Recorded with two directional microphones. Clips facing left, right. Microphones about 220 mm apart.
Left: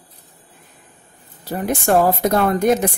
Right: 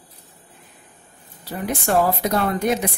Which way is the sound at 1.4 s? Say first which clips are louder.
Left 4 dB; 45° left (ahead or behind).